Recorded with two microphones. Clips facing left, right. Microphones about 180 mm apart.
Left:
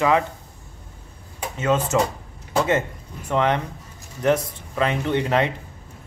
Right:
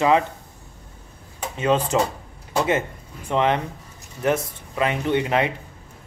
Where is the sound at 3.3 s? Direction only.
20° right (ahead or behind).